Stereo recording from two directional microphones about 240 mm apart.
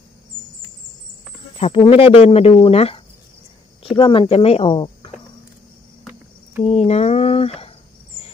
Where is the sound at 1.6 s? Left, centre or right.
Left.